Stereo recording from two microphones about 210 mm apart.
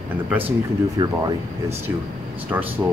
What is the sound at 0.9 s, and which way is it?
Speech, 20° right (ahead or behind).